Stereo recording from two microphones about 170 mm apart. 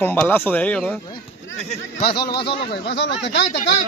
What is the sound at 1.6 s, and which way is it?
Speech, 35° left (ahead or behind).